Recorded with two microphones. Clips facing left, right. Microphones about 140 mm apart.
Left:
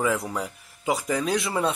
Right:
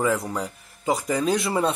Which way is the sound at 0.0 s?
Centre (ahead or behind).